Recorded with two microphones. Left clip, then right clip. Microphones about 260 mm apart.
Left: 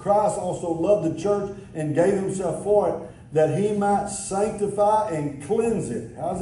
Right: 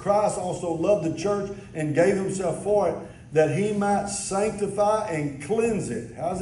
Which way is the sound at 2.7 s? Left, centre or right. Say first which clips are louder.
Left 3 dB; left.